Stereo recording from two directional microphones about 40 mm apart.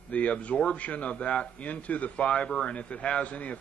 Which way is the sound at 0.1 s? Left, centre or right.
Left.